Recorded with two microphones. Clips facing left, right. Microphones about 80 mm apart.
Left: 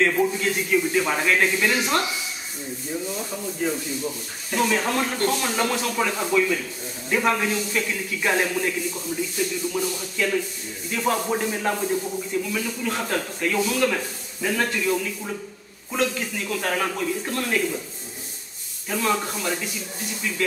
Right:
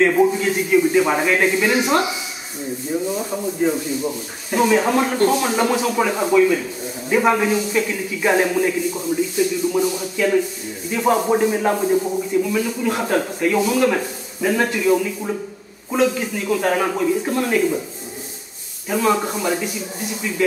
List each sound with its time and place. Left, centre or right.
0.0 s a man's voice: centre
18.9 s a man's voice: centre